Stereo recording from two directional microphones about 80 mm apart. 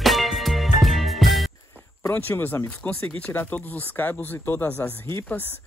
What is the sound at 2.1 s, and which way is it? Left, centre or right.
Speech, left.